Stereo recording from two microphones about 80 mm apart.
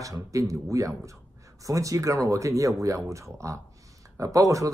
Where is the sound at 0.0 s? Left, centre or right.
Right.